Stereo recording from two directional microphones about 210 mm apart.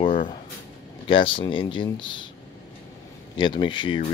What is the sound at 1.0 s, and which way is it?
Speech, 25° left (ahead or behind).